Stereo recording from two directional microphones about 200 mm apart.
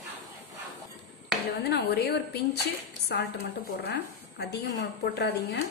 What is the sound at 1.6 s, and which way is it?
A woman's voice, 55° left (ahead or behind).